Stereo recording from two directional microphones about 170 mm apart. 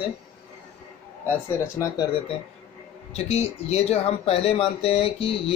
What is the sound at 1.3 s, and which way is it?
Speech, 15° left (ahead or behind).